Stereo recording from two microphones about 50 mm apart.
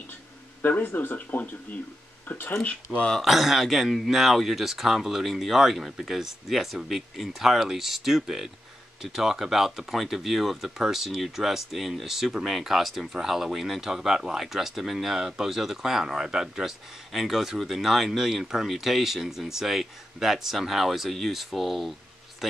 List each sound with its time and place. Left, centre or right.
0.6 s speech: left
2.6 s speech: left
3.1 s speech: centre